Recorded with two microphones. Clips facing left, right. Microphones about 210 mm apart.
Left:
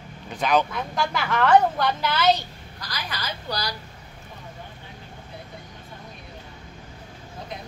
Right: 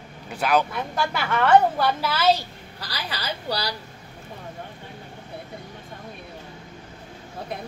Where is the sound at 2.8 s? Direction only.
35° right (ahead or behind).